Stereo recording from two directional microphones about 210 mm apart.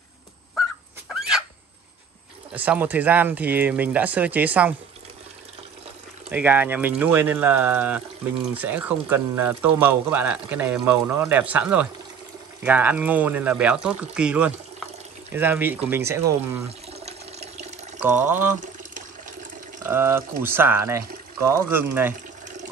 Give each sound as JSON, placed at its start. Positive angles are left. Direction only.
{"t": 0.6, "sound": "dog", "side_deg": -5}
{"t": 2.5, "sound": "speech", "side_deg": -5}
{"t": 6.2, "sound": "speech", "side_deg": -10}
{"t": 16.6, "sound": "water", "side_deg": -30}
{"t": 18.0, "sound": "speech", "side_deg": -10}
{"t": 19.8, "sound": "speech", "side_deg": -10}